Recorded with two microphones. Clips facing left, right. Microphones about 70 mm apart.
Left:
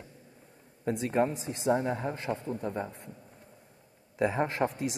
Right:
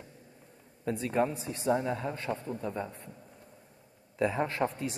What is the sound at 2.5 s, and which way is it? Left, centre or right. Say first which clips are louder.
Speech: left 2 dB; left.